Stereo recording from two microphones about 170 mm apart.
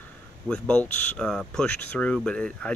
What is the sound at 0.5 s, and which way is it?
Speech, 10° left (ahead or behind).